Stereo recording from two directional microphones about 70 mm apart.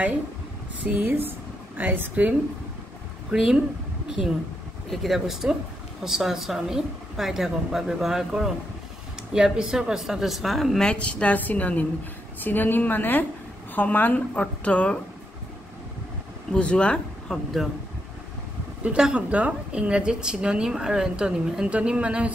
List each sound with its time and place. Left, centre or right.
0.8 s a woman's voice: right
3.3 s speech: centre
4.8 s speech: centre
10.9 s a woman's voice: centre
16.5 s speech: centre
18.8 s a woman's voice: centre